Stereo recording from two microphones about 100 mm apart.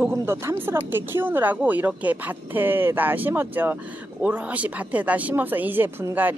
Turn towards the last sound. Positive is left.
turn(degrees=-20)  # may be behind; listen again after turning